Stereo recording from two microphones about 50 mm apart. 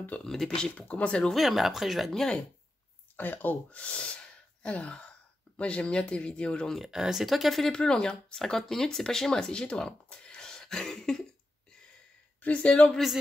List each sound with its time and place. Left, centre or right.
0.2 s speech: centre
0.7 s speech: left
1.3 s speech: centre
2.1 s speech: centre
3.2 s speech: left
3.8 s sneeze: left
5.6 s speech: left
6.9 s speech: centre
7.7 s speech: centre
12.4 s speech: left